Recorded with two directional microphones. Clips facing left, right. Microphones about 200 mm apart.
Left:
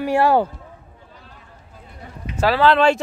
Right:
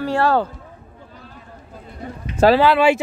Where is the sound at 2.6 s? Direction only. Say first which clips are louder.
Even; 10° right (ahead or behind).